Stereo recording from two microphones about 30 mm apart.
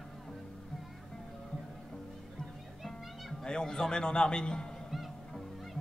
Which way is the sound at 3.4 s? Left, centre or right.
Left.